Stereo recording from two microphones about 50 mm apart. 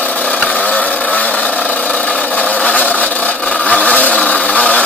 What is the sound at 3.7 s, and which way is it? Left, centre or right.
Vehicle, left.